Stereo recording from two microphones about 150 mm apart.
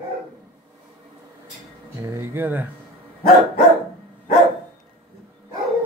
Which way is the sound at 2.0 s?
20° right (ahead or behind).